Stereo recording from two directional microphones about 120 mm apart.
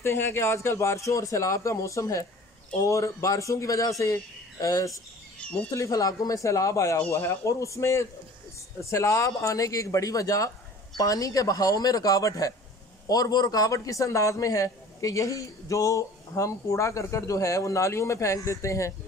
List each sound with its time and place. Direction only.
0.0 s a woman's voice: 20° left (ahead or behind)